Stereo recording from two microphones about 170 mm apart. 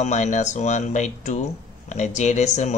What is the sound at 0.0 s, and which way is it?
Speech, 45° left (ahead or behind).